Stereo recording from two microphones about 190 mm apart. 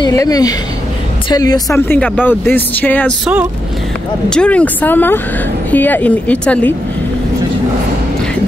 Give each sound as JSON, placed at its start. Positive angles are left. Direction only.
{"t": 0.0, "sound": "a woman's voice", "side_deg": 20}
{"t": 4.3, "sound": "a woman's voice", "side_deg": 5}